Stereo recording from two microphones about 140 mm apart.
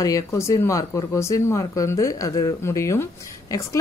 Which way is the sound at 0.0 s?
25° left (ahead or behind).